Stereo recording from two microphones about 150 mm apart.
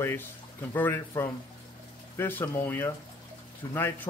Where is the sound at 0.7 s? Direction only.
15° left (ahead or behind).